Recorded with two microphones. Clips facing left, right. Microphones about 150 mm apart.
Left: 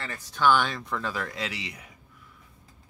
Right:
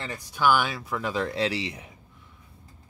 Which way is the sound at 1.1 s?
25° right (ahead or behind).